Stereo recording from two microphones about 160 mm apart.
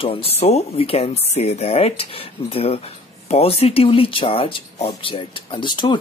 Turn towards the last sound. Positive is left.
turn(degrees=30)  # may be behind; listen again after turning